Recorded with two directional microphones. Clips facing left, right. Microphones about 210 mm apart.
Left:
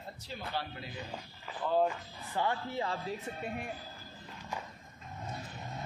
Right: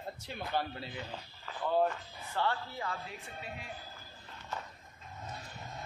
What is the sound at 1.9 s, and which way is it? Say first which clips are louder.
Speech: left 1 dB; 15° left (ahead or behind).